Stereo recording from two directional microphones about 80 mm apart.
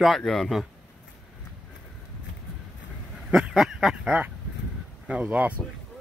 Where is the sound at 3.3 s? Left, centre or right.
Centre.